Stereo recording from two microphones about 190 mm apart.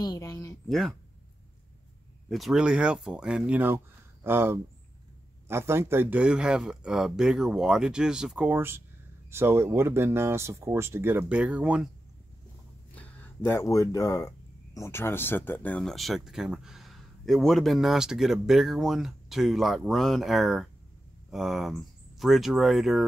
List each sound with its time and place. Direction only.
0.0 s speech: 20° left (ahead or behind)
0.7 s speech: centre (ahead or behind)
2.2 s speech: centre (ahead or behind)
12.9 s speech: 10° left (ahead or behind)